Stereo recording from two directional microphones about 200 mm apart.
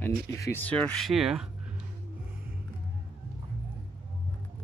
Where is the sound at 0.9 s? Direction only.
Centre (ahead or behind).